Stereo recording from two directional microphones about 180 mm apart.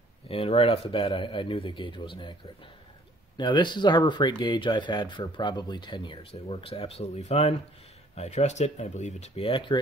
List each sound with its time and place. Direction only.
0.3 s speech: 30° left (ahead or behind)
3.3 s speech: 25° left (ahead or behind)